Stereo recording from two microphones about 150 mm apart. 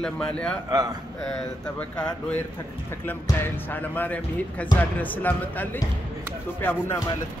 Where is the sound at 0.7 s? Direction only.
25° right (ahead or behind).